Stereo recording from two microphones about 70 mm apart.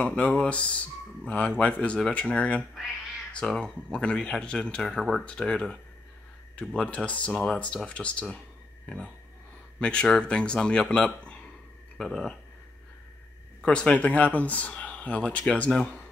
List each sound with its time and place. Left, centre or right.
0.0 s speech: centre
5.2 s speech: centre
9.8 s speech: centre
12.0 s speech: centre
13.6 s speech: centre